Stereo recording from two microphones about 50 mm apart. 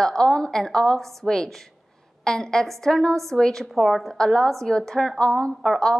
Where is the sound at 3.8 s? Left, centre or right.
Centre.